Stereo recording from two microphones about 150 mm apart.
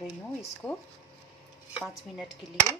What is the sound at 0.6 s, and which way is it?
Speech, 10° left (ahead or behind).